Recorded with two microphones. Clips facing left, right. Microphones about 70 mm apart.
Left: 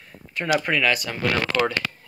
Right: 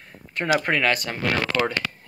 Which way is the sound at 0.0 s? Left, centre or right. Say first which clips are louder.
Right 1 dB; right.